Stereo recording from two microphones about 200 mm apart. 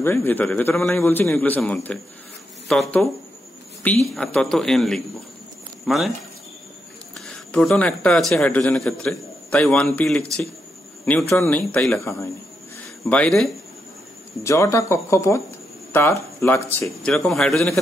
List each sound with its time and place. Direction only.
0.0 s a man's voice: 10° left (ahead or behind)
4.1 s a man's voice: 5° left (ahead or behind)
7.2 s a man's voice: 5° left (ahead or behind)